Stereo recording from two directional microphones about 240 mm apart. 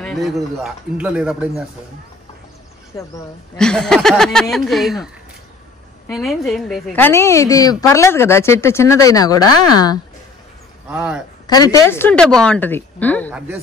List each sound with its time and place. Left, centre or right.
0.0 s speech: centre
2.9 s speech: centre
3.5 s speech: centre
6.1 s speech: centre
10.9 s speech: centre
11.4 s speech: centre